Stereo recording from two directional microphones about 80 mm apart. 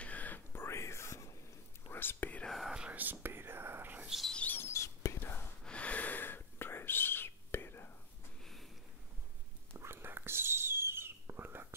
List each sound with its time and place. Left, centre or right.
0.0 s whispering: centre
2.4 s whispering: centre
2.7 s whispering: centre
4.3 s a sound: centre
4.6 s whispering: left
5.2 s whispering: left
5.6 s whispering: centre
9.8 s whispering: right